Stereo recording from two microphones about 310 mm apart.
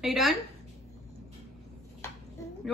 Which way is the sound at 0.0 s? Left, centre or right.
Centre.